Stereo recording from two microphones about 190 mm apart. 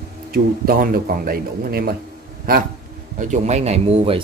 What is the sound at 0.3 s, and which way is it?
Speech, 50° right (ahead or behind).